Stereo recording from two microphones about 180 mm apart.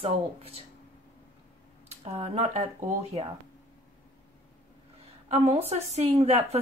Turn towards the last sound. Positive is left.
turn(degrees=-35)  # may be behind; listen again after turning